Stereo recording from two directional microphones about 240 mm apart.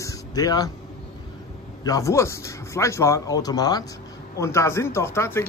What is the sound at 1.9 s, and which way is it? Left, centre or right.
A man's voice, centre.